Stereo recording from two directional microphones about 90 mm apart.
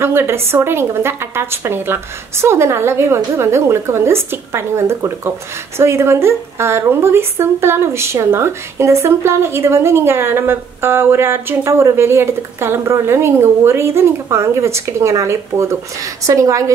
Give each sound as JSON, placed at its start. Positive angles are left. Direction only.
{"t": 0.0, "sound": "speech", "side_deg": -25}